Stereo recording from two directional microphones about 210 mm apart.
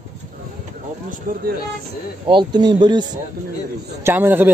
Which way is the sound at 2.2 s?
20° right (ahead or behind).